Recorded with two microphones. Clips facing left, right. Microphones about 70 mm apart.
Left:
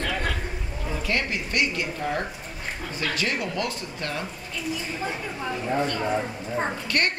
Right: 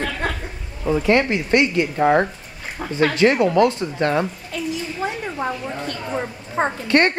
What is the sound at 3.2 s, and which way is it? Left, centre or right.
Speech, right.